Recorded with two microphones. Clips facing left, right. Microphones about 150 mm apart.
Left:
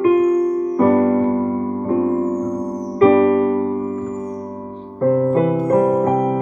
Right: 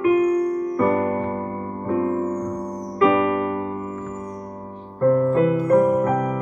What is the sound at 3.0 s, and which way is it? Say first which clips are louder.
Music: left 6 dB; 35° left (ahead or behind).